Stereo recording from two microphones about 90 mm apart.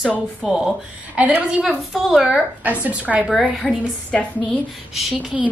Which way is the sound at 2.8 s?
15° right (ahead or behind).